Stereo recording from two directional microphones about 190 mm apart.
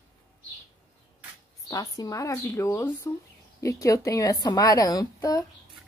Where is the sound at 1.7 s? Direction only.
20° left (ahead or behind).